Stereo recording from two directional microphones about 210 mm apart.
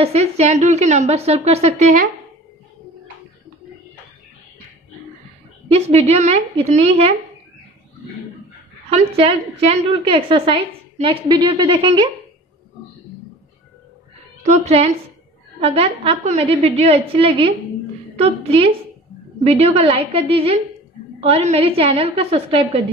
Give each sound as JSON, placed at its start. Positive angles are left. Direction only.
{"t": 0.0, "sound": "a woman's voice", "side_deg": -30}
{"t": 5.7, "sound": "a woman's voice", "side_deg": -30}
{"t": 8.9, "sound": "a woman's voice", "side_deg": -30}
{"t": 14.4, "sound": "a woman's voice", "side_deg": -30}